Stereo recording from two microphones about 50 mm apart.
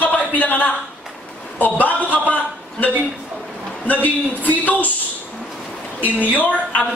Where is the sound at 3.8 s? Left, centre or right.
Left.